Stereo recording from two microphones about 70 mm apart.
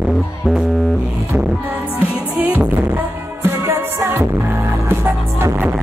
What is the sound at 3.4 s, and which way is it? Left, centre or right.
Music, right.